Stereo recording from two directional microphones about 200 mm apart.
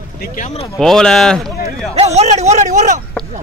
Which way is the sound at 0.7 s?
Centre (ahead or behind).